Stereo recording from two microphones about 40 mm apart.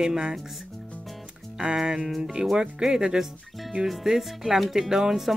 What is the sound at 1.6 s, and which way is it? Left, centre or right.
Speech, centre.